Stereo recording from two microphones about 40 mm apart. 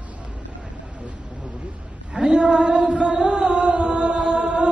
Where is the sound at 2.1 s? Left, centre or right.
Right.